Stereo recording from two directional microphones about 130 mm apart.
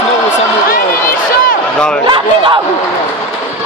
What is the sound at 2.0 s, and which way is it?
Speech, 40° right (ahead or behind).